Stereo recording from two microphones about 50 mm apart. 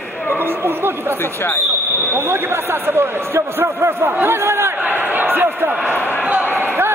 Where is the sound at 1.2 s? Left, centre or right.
Left.